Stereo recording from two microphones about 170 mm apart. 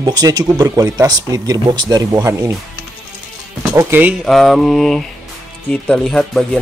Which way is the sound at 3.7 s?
10° right (ahead or behind).